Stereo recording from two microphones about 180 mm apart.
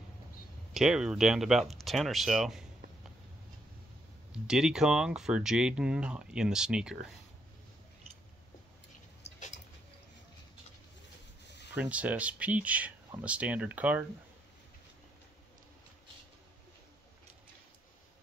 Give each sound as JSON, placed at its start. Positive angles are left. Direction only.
{"t": 0.7, "sound": "speech", "side_deg": -5}
{"t": 4.3, "sound": "speech", "side_deg": -5}
{"t": 11.4, "sound": "rub", "side_deg": 75}
{"t": 11.7, "sound": "speech", "side_deg": -10}